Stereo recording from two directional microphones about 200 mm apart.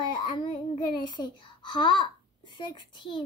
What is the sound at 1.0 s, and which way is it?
A child's voice, 20° left (ahead or behind).